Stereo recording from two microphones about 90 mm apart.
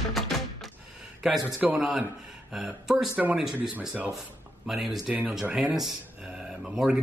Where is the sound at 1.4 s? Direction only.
15° right (ahead or behind).